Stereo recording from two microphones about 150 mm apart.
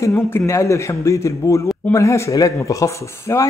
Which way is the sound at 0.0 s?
20° left (ahead or behind).